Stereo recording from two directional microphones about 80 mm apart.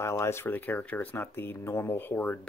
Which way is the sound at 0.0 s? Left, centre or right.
Left.